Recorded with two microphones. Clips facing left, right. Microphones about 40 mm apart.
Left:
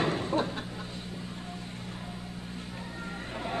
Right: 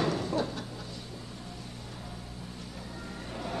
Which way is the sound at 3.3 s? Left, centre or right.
Left.